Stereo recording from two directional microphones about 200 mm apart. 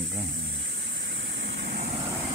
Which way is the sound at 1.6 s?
50° right (ahead or behind).